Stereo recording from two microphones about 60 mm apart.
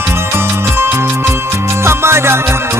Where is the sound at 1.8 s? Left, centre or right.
Right.